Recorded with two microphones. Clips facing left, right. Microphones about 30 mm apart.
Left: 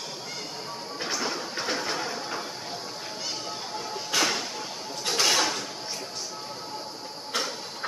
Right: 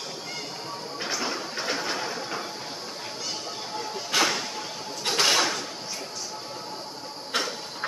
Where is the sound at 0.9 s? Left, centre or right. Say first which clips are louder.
Even; centre.